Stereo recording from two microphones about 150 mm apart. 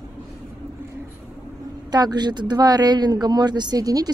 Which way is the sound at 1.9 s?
25° right (ahead or behind).